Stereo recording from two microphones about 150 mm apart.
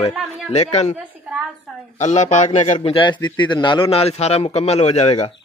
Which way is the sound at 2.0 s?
55° left (ahead or behind).